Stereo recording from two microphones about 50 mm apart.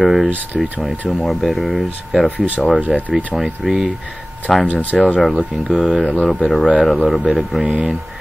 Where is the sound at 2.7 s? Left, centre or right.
Right.